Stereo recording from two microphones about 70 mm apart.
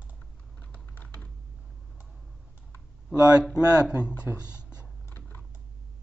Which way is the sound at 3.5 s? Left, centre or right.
Centre.